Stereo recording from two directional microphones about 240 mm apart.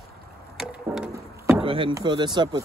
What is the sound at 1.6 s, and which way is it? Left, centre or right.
Speech, right.